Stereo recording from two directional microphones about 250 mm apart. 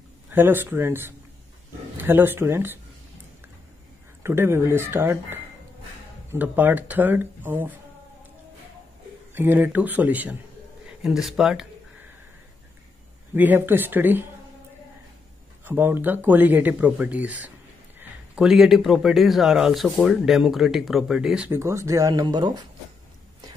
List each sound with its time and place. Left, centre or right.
0.3 s speech: centre
4.2 s speech: centre
9.3 s a man's voice: centre
13.3 s speech: centre
15.6 s a man's voice: centre